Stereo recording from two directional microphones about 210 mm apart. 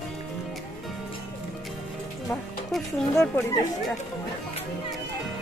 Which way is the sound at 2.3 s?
Centre (ahead or behind).